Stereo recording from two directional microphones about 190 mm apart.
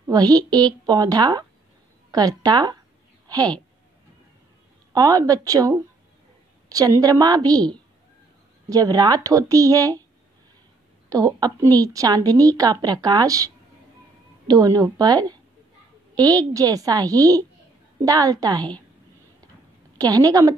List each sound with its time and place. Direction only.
0.1 s a woman's voice: 20° right (ahead or behind)
4.9 s a woman's voice: 20° right (ahead or behind)
11.1 s a woman's voice: 20° right (ahead or behind)
14.5 s a woman's voice: 20° right (ahead or behind)
20.0 s a woman's voice: 20° right (ahead or behind)